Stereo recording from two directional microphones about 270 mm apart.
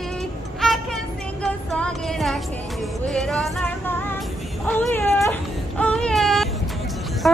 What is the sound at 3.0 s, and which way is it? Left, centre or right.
Female singing, centre.